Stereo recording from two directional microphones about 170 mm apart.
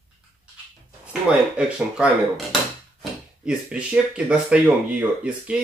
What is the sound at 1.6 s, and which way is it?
Speech, 5° right (ahead or behind).